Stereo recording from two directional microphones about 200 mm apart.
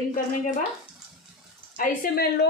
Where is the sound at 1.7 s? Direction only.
45° left (ahead or behind).